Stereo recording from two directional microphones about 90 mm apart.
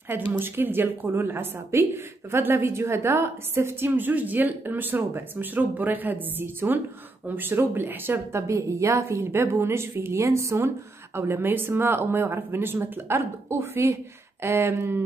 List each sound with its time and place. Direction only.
0.1 s a woman's voice: 25° right (ahead or behind)